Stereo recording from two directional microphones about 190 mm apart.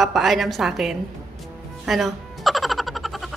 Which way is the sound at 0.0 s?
Centre (ahead or behind).